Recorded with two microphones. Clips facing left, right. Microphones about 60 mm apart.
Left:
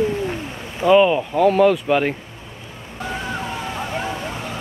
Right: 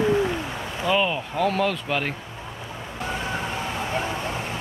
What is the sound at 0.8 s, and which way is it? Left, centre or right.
Speech, centre.